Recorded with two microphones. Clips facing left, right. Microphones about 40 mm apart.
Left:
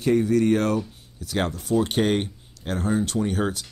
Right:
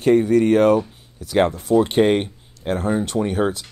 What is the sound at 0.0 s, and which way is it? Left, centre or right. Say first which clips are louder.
Speech: right 5 dB; right.